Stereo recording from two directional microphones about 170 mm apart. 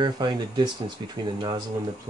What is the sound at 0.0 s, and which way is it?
Speech, 25° right (ahead or behind).